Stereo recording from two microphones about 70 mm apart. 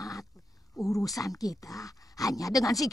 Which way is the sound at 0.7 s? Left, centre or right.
Left.